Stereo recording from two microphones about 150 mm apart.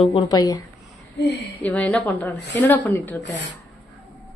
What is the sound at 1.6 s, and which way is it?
A woman's voice, 10° left (ahead or behind).